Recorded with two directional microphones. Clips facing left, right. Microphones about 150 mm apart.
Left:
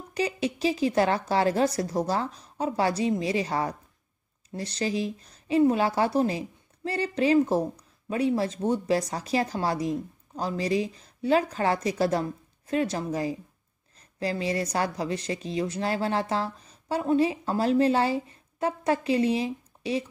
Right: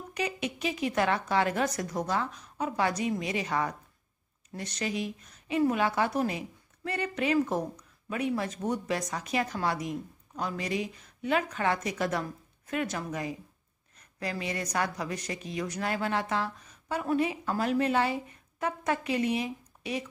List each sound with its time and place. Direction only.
0.1 s a woman's voice: 30° left (ahead or behind)